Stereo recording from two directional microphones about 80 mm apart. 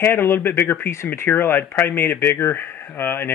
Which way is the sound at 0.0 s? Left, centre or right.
Left.